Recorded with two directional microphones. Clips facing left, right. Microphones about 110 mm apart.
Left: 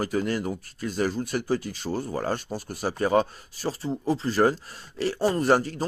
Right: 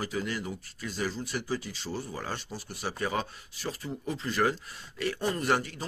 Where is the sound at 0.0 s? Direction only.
45° left (ahead or behind).